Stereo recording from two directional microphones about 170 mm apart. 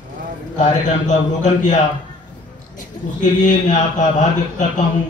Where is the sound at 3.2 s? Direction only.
45° left (ahead or behind).